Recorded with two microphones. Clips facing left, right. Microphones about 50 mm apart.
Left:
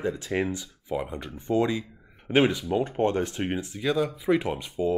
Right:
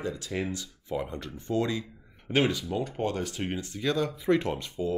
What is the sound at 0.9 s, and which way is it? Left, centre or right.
Speech, centre.